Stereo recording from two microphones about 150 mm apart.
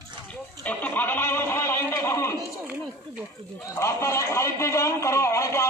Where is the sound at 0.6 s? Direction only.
10° left (ahead or behind).